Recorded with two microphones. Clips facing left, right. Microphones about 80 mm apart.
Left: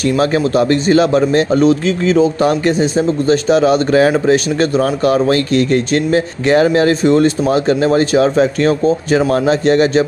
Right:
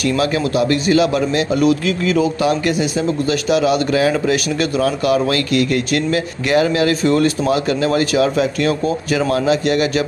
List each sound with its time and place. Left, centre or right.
0.0 s a man's voice: left